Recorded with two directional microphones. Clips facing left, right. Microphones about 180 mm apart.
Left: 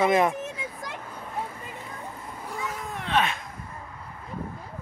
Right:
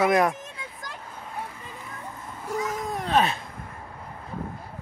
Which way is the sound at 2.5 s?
40° right (ahead or behind).